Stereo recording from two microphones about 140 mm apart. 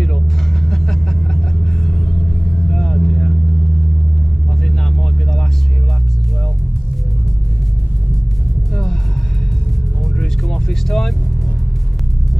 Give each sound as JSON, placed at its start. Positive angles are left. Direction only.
{"t": 0.0, "sound": "vehicle", "side_deg": 5}
{"t": 4.6, "sound": "music", "side_deg": 5}
{"t": 10.2, "sound": "vehicle", "side_deg": 5}